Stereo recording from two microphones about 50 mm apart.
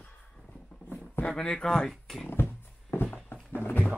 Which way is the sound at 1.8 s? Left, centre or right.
Centre.